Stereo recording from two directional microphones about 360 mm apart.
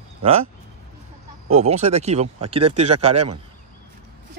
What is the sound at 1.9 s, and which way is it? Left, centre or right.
Speech, centre.